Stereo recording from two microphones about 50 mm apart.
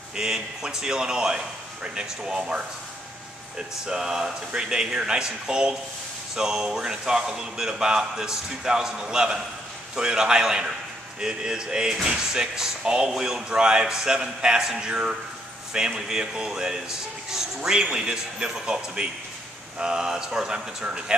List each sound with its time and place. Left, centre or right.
0.1 s speech: centre
3.8 s speech: centre